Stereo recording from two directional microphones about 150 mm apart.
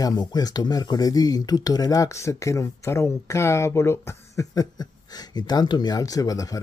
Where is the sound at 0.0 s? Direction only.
25° left (ahead or behind).